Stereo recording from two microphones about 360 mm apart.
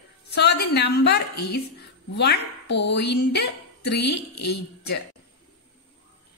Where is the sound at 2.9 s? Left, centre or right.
Left.